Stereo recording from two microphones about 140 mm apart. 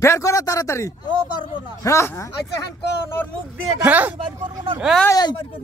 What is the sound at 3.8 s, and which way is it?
Speech, 10° right (ahead or behind).